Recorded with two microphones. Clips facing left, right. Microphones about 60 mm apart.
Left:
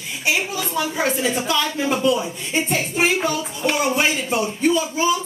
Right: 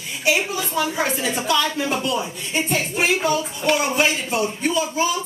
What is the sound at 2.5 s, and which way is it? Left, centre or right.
Speech, left.